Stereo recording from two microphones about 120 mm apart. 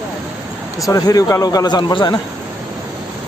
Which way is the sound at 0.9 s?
30° left (ahead or behind).